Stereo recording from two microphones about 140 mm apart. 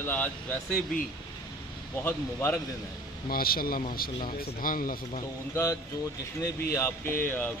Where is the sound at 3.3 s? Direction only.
90° left.